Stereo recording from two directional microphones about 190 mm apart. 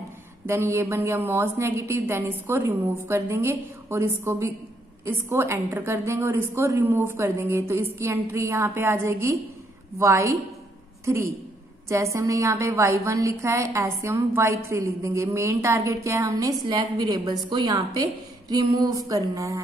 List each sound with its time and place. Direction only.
0.5 s a woman's voice: 15° right (ahead or behind)
17.5 s music: 20° right (ahead or behind)